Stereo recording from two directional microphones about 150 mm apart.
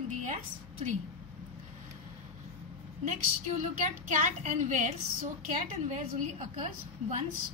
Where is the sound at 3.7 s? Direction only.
55° right (ahead or behind).